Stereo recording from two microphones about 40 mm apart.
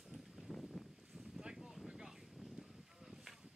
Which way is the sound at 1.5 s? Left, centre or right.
Centre.